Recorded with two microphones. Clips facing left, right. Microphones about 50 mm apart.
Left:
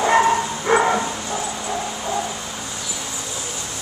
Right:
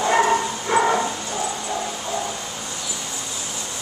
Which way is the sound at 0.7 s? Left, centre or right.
Left.